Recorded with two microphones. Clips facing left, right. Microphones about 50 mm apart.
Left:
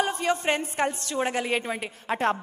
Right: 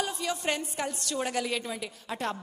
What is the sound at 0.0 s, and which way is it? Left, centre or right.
A woman's voice, left.